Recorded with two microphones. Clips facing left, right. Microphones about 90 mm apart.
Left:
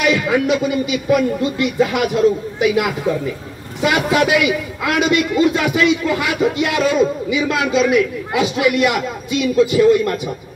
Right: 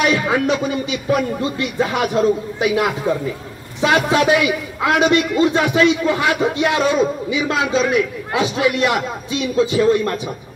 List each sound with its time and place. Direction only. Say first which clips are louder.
0.0 s a man's voice: left 1 dB; 30° right (ahead or behind)